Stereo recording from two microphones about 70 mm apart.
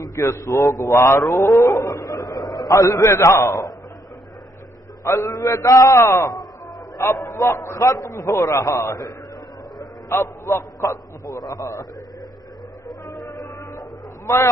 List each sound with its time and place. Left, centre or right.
0.2 s a man's voice: left
2.6 s a man's voice: left
5.0 s a man's voice: left
10.1 s a man's voice: left
12.8 s a sound: left
13.7 s a sound: left